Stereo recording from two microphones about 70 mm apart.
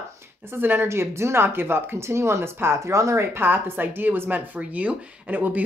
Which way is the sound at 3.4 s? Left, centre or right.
Right.